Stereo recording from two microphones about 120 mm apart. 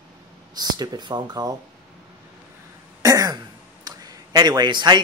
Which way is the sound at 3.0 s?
25° right (ahead or behind).